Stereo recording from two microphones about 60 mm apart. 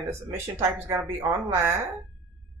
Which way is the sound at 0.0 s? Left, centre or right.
Right.